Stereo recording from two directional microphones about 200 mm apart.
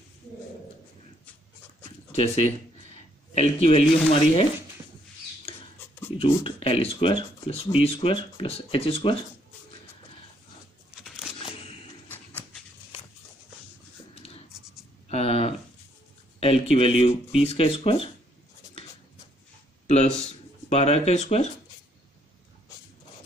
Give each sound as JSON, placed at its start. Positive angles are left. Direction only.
{"t": 2.1, "sound": "speech", "side_deg": 30}
{"t": 6.1, "sound": "speech", "side_deg": 30}
{"t": 15.0, "sound": "a sound", "side_deg": 30}
{"t": 16.3, "sound": "speech", "side_deg": 30}
{"t": 20.7, "sound": "speech", "side_deg": 35}